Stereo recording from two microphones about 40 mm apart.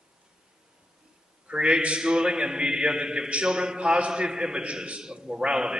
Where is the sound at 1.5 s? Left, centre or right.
Right.